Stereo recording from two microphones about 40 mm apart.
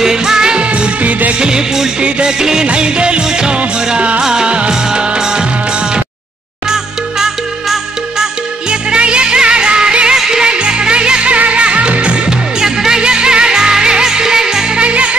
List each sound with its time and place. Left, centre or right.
0.0 s music: centre
0.6 s music: right
2.0 s music: right
2.3 s music: centre
2.6 s music: right
4.2 s music: centre
8.6 s music: right
10.4 s music: right
12.5 s music: centre
14.8 s music: right